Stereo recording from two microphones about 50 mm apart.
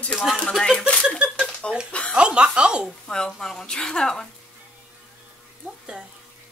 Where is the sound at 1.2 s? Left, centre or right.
Centre.